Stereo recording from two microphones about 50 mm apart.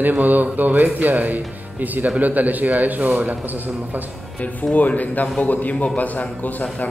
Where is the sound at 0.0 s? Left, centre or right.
Right.